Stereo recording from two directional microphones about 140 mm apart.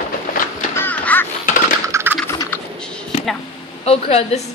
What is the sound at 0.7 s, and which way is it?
Quack, 10° left (ahead or behind).